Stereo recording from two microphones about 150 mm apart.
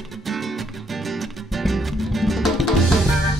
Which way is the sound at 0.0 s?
Centre (ahead or behind).